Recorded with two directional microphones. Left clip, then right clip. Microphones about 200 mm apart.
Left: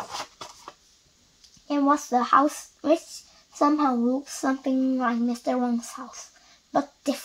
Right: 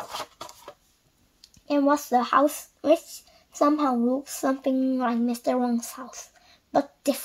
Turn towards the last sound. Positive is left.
turn(degrees=-45)  # may be behind; listen again after turning